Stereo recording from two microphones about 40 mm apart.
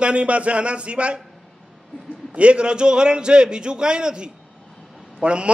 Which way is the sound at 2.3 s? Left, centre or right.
Right.